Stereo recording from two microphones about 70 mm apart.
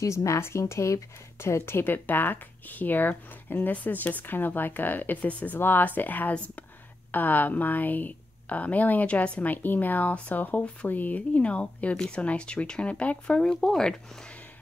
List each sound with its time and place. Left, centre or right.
0.0 s speech: left; by 13.9 s centre